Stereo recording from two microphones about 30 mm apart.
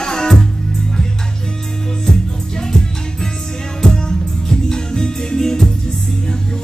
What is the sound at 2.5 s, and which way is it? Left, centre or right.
Music, left.